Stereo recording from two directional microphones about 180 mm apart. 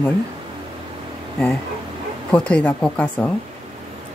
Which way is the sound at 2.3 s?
5° left (ahead or behind).